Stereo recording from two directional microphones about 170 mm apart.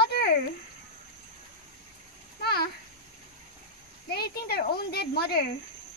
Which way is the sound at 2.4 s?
70° left (ahead or behind).